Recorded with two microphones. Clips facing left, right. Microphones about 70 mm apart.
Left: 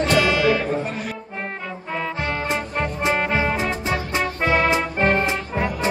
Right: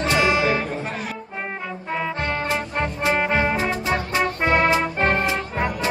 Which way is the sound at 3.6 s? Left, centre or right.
Right.